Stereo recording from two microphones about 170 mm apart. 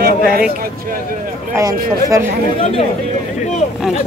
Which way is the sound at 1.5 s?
15° right (ahead or behind).